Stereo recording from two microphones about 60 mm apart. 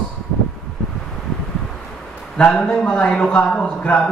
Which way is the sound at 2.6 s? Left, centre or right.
Centre.